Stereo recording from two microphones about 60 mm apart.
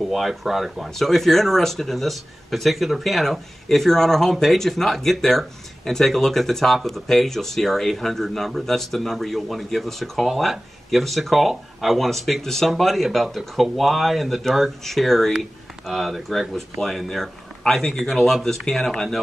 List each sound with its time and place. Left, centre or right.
0.0 s speech: centre